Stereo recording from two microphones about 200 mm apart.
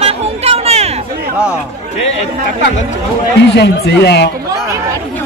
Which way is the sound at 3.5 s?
60° left (ahead or behind).